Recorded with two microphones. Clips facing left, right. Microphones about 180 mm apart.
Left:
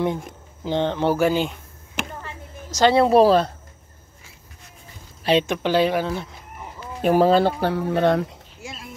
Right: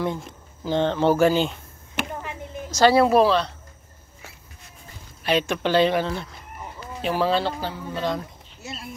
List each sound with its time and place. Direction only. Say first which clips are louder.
0.7 s speech: right 1 dB; 15° left (ahead or behind)
2.7 s speech: left 1 dB; 20° left (ahead or behind)
3.3 s speech: left 4 dB; 45° left (ahead or behind)
5.2 s speech: left 3 dB; 25° left (ahead or behind)
5.6 s speech: even; 10° left (ahead or behind)
7.0 s speech: left 6 dB; 50° left (ahead or behind); by 8.8 s 80° left